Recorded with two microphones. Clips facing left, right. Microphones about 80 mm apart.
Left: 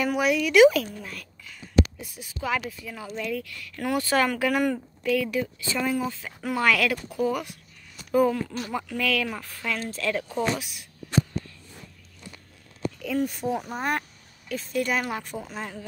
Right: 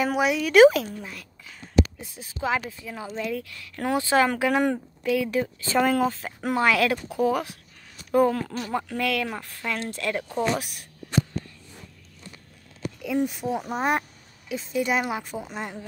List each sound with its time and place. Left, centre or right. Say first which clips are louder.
0.0 s speech: even; right
0.7 s speech: even; centre
1.5 s a sound: even; right
2.8 s speech: right 2 dB; right
5.3 s speech: right 4 dB; right
6.5 s speech: right 2 dB; right
8.1 s speech: right 1 dB; right; by 10.2 s centre
10.6 s speech: right 2 dB; right
13.0 s speech: right 2 dB; centre